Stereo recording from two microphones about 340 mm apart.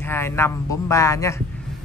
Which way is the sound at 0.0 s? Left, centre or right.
Centre.